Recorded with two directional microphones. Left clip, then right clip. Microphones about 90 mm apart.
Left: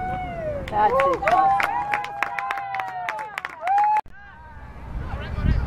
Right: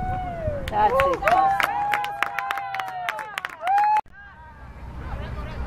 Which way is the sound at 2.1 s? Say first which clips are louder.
Even; 40° right (ahead or behind).